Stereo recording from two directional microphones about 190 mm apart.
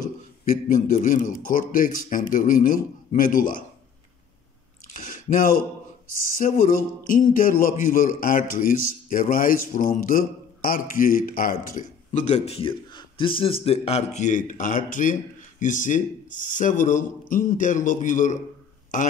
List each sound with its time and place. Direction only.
0.5 s a man's voice: 45° left (ahead or behind)
4.8 s chewing: 45° left (ahead or behind)
6.4 s a man's voice: 45° left (ahead or behind)